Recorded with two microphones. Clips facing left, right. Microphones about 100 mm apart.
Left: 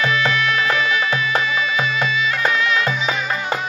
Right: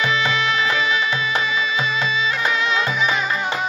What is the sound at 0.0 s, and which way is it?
Music, 20° right (ahead or behind).